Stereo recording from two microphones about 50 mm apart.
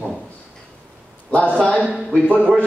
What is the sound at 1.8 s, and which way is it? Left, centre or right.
Speech, centre.